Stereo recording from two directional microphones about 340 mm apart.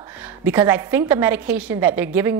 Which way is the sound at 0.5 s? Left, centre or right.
Centre.